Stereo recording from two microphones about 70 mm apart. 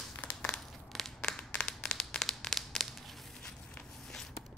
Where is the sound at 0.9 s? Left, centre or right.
Centre.